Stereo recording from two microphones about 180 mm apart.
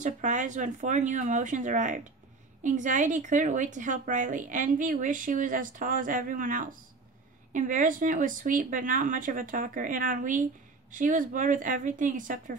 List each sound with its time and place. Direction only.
0.0 s a woman's voice: 45° right (ahead or behind)